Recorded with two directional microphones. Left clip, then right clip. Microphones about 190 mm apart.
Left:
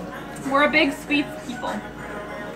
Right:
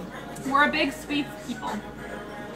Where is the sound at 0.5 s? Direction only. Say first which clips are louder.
Left 4 dB; 10° right (ahead or behind).